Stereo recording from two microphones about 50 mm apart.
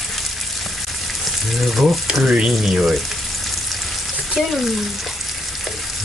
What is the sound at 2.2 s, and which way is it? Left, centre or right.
Speech, centre.